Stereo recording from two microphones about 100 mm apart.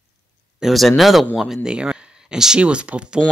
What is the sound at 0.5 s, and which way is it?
Speech, centre (ahead or behind).